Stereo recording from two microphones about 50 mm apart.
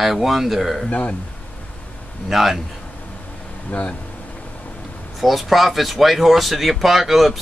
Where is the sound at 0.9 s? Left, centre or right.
Left.